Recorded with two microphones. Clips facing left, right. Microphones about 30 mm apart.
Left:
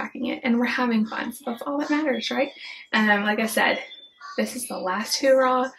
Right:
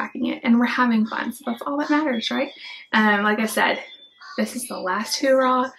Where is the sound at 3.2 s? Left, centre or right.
Centre.